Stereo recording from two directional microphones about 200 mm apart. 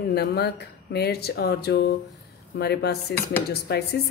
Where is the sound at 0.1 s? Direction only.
55° left (ahead or behind).